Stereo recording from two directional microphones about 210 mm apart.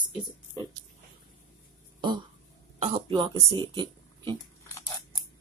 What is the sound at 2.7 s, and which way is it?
Speech, 30° right (ahead or behind).